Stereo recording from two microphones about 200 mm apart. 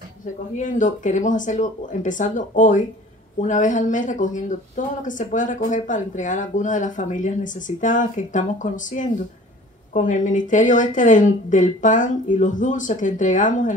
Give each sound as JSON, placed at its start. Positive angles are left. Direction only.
{"t": 0.6, "sound": "speech", "side_deg": 40}